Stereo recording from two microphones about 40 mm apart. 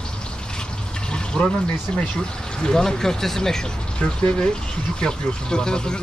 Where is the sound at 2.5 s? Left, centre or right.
Centre.